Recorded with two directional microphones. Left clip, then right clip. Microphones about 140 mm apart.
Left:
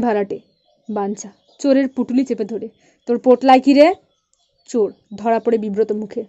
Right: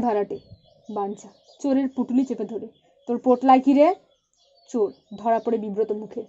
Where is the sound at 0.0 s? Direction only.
35° left (ahead or behind).